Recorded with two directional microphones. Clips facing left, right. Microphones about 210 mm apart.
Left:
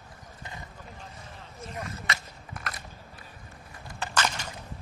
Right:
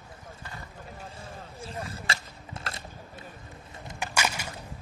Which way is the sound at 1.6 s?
30° right (ahead or behind).